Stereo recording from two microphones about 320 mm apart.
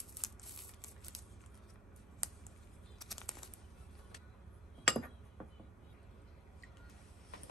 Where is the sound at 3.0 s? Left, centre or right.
Centre.